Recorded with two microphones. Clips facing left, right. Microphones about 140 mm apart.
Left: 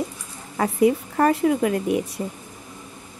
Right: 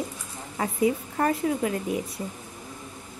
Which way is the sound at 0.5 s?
90° left.